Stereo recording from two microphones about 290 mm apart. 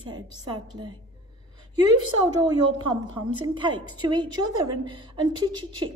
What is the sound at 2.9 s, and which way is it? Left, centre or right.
A woman's voice, centre.